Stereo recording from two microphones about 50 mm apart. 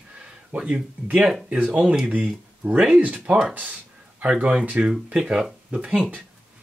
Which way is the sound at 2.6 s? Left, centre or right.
Right.